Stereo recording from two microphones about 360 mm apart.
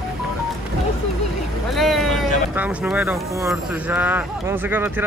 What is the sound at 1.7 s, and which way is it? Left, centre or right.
Speech, centre.